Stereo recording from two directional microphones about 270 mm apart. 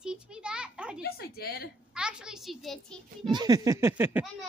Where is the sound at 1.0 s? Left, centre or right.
Left.